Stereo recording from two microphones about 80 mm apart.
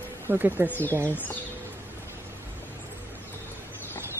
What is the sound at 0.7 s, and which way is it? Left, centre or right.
Speech, left.